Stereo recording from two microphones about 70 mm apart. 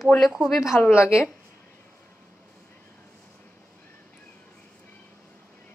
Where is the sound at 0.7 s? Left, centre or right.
Left.